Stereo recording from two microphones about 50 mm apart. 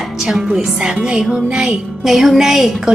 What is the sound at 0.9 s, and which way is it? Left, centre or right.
Music, centre.